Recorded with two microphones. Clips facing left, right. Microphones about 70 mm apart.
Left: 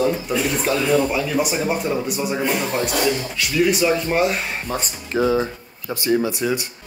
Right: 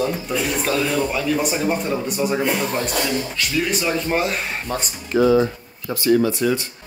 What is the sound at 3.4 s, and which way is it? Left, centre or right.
Speech, centre.